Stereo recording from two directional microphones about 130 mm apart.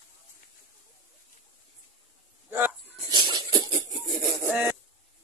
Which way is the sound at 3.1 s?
35° right (ahead or behind).